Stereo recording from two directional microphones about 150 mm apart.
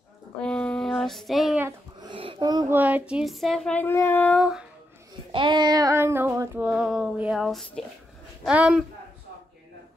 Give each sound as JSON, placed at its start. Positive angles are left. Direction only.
{"t": 0.4, "sound": "child singing", "side_deg": 5}
{"t": 2.0, "sound": "a sound", "side_deg": -35}
{"t": 2.7, "sound": "speech", "side_deg": -10}
{"t": 4.4, "sound": "speech", "side_deg": -5}
{"t": 5.3, "sound": "child singing", "side_deg": -30}
{"t": 6.7, "sound": "a woman's voice", "side_deg": -5}